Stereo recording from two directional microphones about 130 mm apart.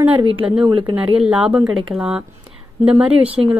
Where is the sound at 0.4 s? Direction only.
10° right (ahead or behind).